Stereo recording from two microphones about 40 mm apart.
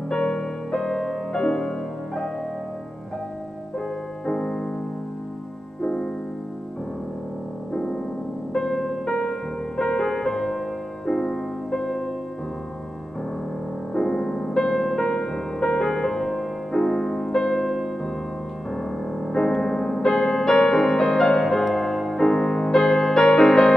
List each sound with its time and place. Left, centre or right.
0.1 s music: centre
4.3 s music: left
5.8 s music: centre
7.7 s music: centre
13.9 s music: centre
22.2 s music: centre